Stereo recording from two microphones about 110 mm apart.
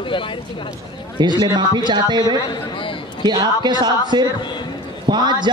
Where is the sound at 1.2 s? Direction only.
40° right (ahead or behind).